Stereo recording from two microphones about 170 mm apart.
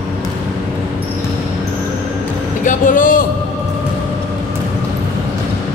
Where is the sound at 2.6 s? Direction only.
50° left (ahead or behind).